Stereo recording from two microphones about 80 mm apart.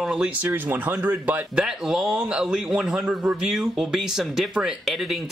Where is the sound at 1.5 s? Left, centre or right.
Centre.